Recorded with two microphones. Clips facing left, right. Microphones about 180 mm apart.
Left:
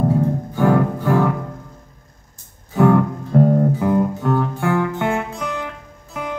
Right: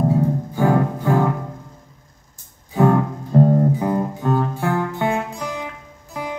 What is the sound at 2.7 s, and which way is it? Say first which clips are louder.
Music: left 2 dB; 5° right (ahead or behind).